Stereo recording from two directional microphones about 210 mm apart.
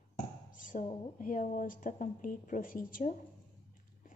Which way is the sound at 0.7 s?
40° left (ahead or behind).